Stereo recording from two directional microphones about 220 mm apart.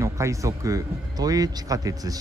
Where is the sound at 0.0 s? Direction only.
15° right (ahead or behind).